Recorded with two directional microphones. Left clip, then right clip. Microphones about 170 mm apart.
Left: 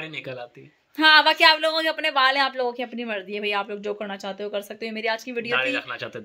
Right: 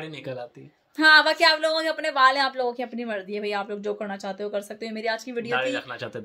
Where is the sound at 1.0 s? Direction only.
25° left (ahead or behind).